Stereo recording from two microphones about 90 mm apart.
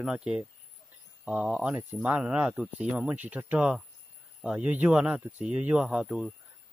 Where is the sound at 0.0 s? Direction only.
5° right (ahead or behind).